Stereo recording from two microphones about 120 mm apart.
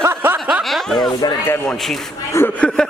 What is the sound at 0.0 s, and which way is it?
Snicker, 20° right (ahead or behind).